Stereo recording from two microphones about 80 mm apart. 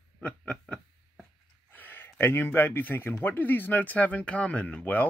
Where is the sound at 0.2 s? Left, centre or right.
Centre.